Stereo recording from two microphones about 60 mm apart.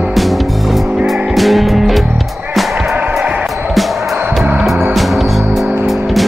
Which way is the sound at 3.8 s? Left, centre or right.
Centre.